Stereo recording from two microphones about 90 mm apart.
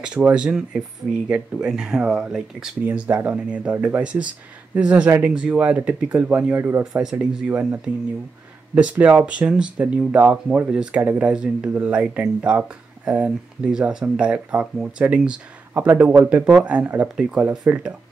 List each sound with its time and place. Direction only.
0.0 s speech: 10° right (ahead or behind)
6.8 s speech: 10° right (ahead or behind)